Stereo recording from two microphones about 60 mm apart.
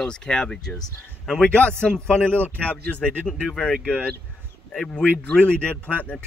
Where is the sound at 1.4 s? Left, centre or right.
Left.